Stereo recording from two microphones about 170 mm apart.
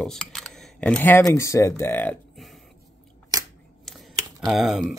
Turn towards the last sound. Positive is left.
turn(degrees=0)  # may be behind; listen again after turning